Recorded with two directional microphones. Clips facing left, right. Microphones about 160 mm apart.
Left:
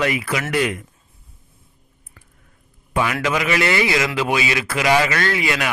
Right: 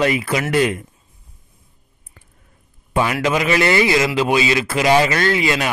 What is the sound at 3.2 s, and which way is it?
Speech, 30° right (ahead or behind).